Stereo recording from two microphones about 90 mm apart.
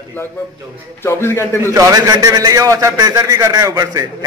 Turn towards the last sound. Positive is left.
turn(degrees=-45)  # may be behind; listen again after turning